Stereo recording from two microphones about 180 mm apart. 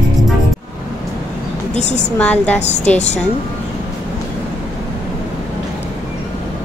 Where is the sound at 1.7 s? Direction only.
40° left (ahead or behind).